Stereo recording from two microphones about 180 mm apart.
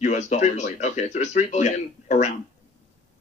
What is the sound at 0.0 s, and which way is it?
Speech, 40° left (ahead or behind).